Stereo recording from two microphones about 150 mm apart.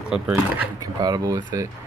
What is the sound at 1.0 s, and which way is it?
Speech, 25° right (ahead or behind).